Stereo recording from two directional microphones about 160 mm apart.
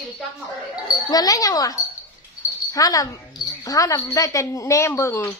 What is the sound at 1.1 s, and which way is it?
Speech, 20° left (ahead or behind).